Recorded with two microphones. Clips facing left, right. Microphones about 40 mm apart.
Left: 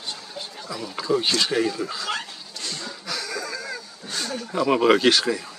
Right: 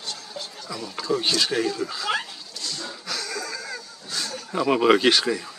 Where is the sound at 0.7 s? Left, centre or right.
Centre.